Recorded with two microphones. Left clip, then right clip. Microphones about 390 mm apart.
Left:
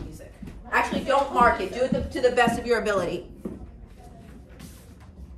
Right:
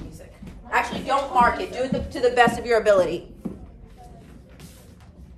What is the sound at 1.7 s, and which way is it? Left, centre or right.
A woman's voice, centre.